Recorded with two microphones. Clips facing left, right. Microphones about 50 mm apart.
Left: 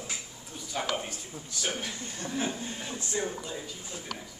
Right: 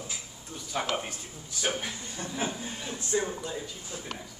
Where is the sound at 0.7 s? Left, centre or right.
Centre.